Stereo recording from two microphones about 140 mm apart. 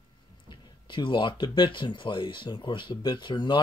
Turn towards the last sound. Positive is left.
turn(degrees=35)  # may be behind; listen again after turning